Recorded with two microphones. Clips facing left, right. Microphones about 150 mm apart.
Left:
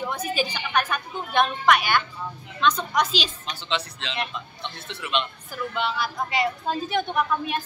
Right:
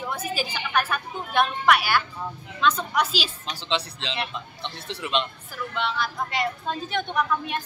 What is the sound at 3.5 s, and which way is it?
Speech, 30° right (ahead or behind).